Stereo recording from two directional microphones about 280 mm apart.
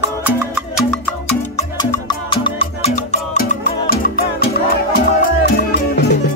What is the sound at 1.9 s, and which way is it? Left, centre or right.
Music, centre.